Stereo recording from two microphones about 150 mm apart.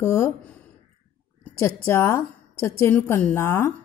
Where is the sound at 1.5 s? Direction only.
15° left (ahead or behind).